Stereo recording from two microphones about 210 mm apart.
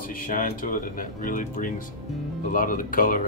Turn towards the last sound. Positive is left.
turn(degrees=40)  # may be behind; listen again after turning